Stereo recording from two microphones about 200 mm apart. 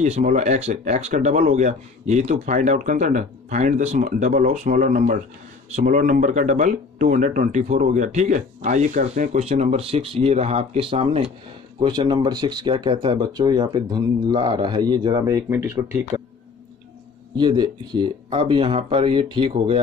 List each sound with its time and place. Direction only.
0.0 s speech: 35° right (ahead or behind); by 16.0 s 10° right (ahead or behind)
17.4 s speech: 20° right (ahead or behind)